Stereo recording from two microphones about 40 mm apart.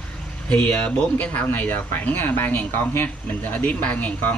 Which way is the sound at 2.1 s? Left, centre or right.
Left.